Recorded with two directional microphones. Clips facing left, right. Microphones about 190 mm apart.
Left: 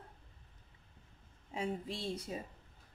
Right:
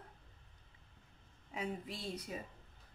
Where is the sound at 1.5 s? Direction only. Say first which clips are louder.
Left 3 dB; 30° left (ahead or behind).